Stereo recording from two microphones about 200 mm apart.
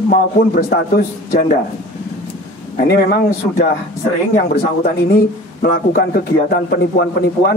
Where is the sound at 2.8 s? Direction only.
50° left (ahead or behind).